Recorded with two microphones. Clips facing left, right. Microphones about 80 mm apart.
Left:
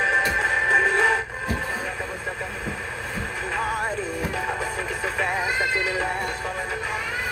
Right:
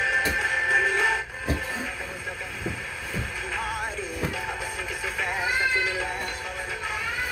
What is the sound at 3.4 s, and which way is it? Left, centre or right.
Music, left.